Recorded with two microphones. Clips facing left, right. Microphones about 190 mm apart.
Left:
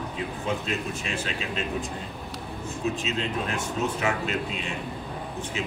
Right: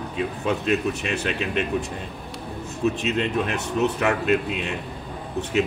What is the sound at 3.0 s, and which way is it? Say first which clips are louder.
A man's voice: right 5 dB; 65° right (ahead or behind).